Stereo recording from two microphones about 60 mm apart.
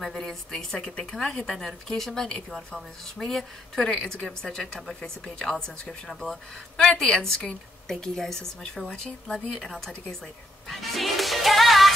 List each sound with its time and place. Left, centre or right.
0.0 s a woman's voice: centre
10.7 s music: centre